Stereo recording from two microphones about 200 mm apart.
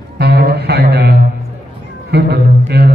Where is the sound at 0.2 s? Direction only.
55° right (ahead or behind).